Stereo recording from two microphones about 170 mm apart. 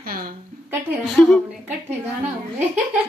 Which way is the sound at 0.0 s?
60° right (ahead or behind).